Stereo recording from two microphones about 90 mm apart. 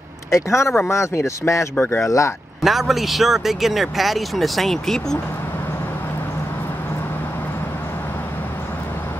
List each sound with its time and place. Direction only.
0.3 s speech: 30° left (ahead or behind)
2.6 s speech: centre (ahead or behind)